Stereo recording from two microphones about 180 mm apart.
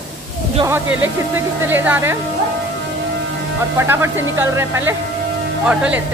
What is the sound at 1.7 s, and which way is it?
Speech, 10° right (ahead or behind).